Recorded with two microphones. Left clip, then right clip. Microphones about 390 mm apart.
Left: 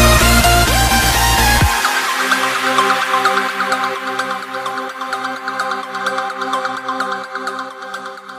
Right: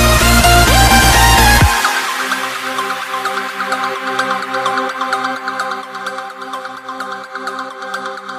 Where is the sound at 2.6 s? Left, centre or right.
Left.